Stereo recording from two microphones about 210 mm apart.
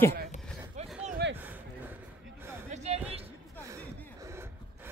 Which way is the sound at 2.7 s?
30° right (ahead or behind).